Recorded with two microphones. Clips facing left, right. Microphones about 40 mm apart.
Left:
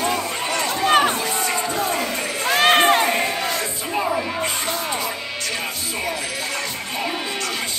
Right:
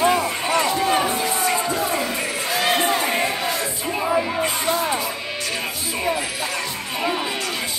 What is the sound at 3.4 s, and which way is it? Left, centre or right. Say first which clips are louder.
Crowd: even; centre.